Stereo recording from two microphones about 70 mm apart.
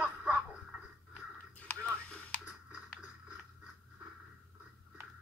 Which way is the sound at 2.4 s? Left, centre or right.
Centre.